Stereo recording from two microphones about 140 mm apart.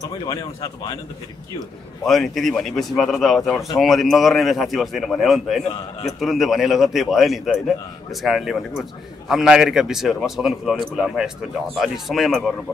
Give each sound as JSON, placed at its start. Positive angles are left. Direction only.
{"t": 0.2, "sound": "a man's voice", "side_deg": 30}
{"t": 2.0, "sound": "speech", "side_deg": 0}